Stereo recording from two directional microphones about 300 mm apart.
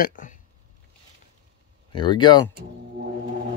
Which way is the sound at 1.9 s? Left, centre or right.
Centre.